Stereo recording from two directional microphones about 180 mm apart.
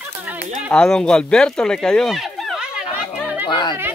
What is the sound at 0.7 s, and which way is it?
Speech, 5° left (ahead or behind).